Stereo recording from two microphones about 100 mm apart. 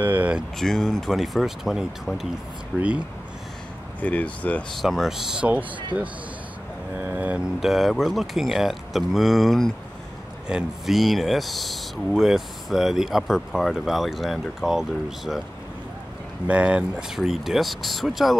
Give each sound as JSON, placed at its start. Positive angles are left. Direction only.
{"t": 0.0, "sound": "vehicle", "side_deg": -15}
{"t": 0.6, "sound": "speech", "side_deg": 5}
{"t": 4.0, "sound": "speech", "side_deg": 15}
{"t": 4.7, "sound": "speech", "side_deg": 0}
{"t": 7.0, "sound": "vehicle", "side_deg": -15}
{"t": 7.6, "sound": "speech", "side_deg": 0}
{"t": 16.4, "sound": "speech", "side_deg": -15}
{"t": 17.2, "sound": "speech", "side_deg": 0}